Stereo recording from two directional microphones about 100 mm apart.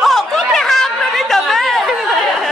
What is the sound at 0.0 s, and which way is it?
Chatter, 5° left (ahead or behind).